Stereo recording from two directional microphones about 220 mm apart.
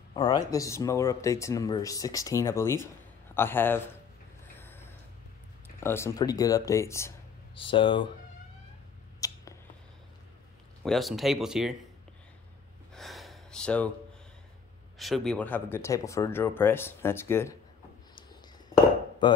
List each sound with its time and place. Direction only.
0.1 s speech: 15° left (ahead or behind)
4.6 s gasp: 10° left (ahead or behind)
5.8 s speech: 10° left (ahead or behind)
7.5 s speech: 25° left (ahead or behind)
9.2 s a sound: 15° left (ahead or behind)
10.8 s speech: centre (ahead or behind)
12.9 s gasp: centre (ahead or behind)
15.0 s speech: centre (ahead or behind)
19.2 s speech: 20° left (ahead or behind)